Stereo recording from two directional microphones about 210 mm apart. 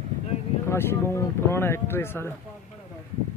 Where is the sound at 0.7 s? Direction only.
10° left (ahead or behind).